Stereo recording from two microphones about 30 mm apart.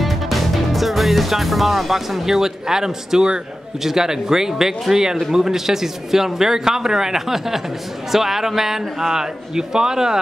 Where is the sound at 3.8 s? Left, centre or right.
Centre.